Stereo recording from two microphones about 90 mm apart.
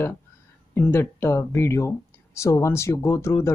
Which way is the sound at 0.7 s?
25° left (ahead or behind).